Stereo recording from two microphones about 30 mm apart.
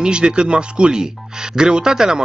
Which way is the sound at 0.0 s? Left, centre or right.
Right.